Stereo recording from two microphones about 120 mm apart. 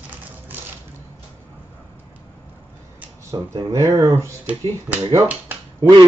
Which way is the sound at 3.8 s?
25° right (ahead or behind).